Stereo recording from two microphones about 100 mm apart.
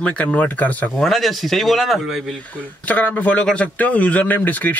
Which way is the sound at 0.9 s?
Centre (ahead or behind).